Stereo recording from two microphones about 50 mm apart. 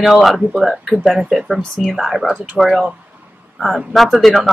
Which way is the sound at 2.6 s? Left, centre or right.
Centre.